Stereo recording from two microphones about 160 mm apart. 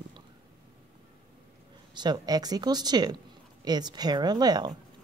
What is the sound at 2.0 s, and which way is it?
Speech, 25° right (ahead or behind).